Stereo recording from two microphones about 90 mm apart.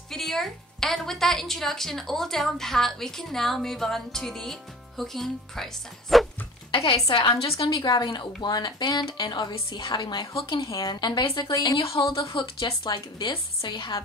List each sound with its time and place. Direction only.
0.1 s a woman's voice: 5° left (ahead or behind)
6.7 s a woman's voice: 80° left; by 11.5 s 65° left (ahead or behind)
11.8 s a woman's voice: 80° left; by 13.9 s 60° left (ahead or behind)